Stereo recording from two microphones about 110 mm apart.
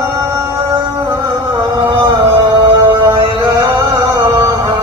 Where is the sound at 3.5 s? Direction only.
30° right (ahead or behind).